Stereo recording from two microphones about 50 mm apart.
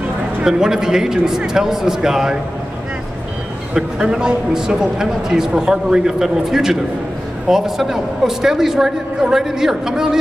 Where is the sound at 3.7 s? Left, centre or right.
Centre.